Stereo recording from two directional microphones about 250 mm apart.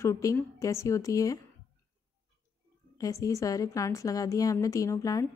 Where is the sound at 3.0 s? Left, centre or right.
Centre.